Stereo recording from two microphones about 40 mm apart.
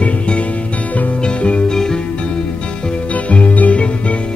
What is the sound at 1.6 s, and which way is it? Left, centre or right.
Music, centre.